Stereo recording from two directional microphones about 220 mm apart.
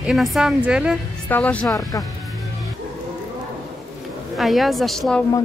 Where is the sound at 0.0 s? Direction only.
Centre (ahead or behind).